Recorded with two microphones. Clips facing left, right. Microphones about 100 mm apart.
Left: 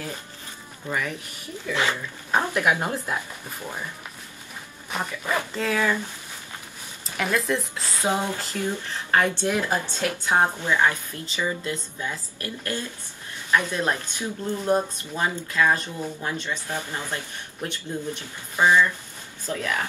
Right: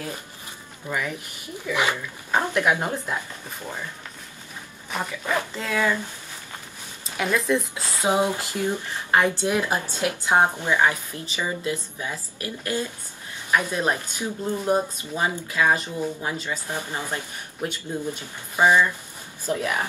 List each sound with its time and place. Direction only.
0.8 s speech: 20° right (ahead or behind)
2.3 s speech: 5° left (ahead or behind)
4.9 s speech: centre (ahead or behind)
7.2 s speech: centre (ahead or behind)
8.0 s speech: 15° right (ahead or behind)